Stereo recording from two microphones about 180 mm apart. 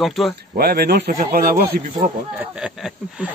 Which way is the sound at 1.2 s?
55° right (ahead or behind).